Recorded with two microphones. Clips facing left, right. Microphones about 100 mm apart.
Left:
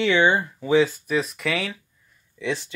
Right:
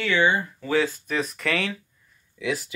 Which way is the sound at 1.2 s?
5° left (ahead or behind).